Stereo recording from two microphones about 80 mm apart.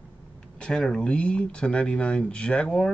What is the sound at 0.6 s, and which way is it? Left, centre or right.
Speech, centre.